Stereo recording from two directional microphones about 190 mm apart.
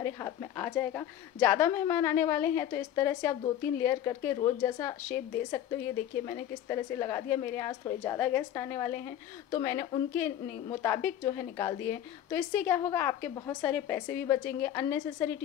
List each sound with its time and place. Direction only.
0.0 s a woman's voice: 15° left (ahead or behind)